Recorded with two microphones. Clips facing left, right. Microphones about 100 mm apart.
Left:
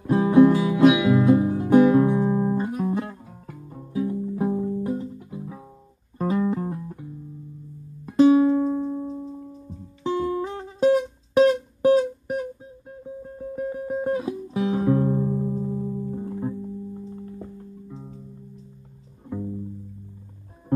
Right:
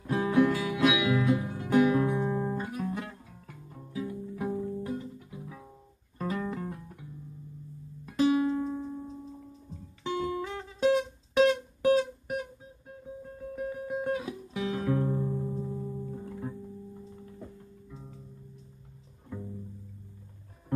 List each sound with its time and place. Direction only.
0.0 s music: 25° left (ahead or behind)
13.6 s music: 35° left (ahead or behind)
17.8 s music: 25° left (ahead or behind)